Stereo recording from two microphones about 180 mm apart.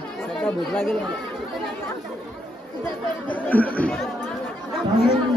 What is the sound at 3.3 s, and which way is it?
Chatter, 10° left (ahead or behind).